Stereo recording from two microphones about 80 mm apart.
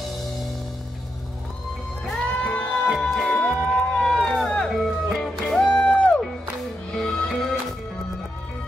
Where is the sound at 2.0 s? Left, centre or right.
Centre.